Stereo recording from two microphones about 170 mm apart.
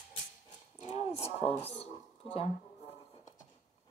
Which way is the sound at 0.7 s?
35° left (ahead or behind).